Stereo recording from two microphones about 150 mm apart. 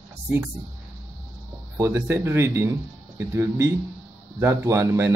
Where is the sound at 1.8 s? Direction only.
15° right (ahead or behind).